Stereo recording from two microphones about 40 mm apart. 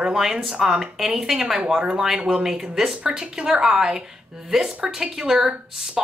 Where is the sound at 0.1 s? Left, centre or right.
Centre.